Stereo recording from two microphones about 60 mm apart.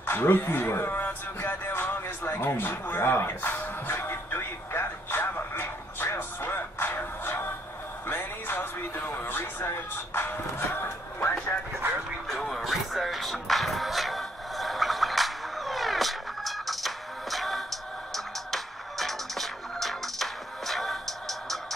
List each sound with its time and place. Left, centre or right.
0.0 s a sound: left
8.1 s music: left
12.3 s music: centre